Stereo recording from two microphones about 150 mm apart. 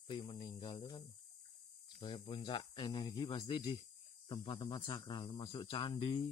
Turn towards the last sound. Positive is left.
turn(degrees=35)  # may be behind; listen again after turning